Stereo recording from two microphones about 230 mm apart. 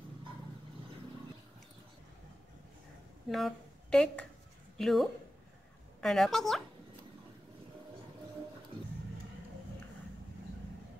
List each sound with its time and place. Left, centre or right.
3.3 s a woman's voice: centre